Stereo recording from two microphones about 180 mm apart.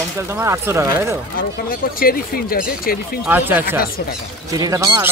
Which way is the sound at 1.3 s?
55° left (ahead or behind).